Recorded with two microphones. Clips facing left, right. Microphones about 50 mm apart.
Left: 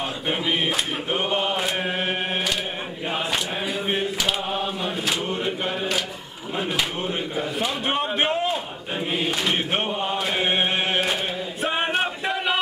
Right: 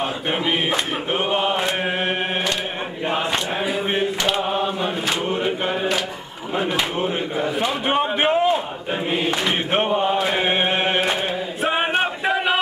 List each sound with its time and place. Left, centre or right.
0.3 s chant: centre
3.6 s mantra: centre
6.5 s a man's voice: centre
9.1 s chant: centre